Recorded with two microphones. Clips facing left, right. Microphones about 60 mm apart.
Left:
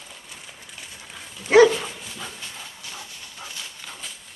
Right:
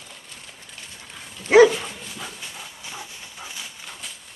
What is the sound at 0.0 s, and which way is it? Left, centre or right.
Dog, centre.